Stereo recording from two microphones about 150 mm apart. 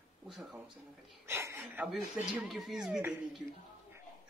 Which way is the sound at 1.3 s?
15° right (ahead or behind).